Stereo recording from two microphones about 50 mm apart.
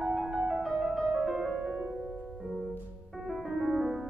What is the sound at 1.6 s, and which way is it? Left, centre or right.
Music, right.